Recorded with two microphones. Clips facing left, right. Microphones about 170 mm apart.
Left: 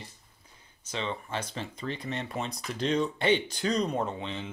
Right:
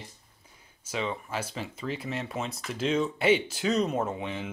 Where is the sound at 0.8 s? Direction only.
5° right (ahead or behind).